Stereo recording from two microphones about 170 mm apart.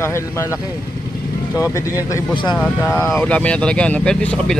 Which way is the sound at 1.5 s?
20° left (ahead or behind).